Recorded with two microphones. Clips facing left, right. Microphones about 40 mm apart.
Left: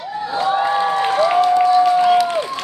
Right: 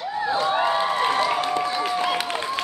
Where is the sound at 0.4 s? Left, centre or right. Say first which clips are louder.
Left 6 dB; centre.